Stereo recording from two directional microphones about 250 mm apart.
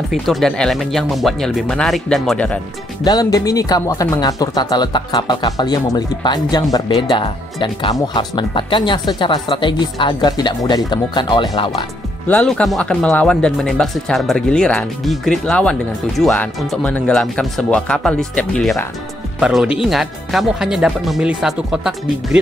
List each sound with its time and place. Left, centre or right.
0.1 s speech: centre
3.0 s speech: centre
12.3 s speech: centre